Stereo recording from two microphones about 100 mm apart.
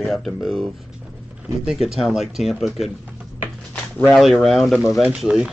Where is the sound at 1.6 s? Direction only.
5° right (ahead or behind).